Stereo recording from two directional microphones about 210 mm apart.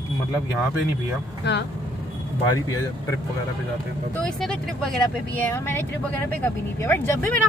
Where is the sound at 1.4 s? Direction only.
55° left (ahead or behind).